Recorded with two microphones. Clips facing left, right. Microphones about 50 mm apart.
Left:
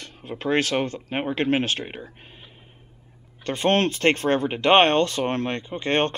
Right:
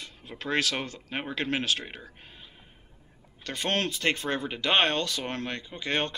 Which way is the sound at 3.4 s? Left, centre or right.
Left.